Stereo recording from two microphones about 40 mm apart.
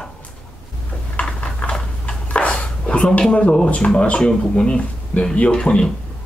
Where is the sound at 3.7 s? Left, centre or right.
Left.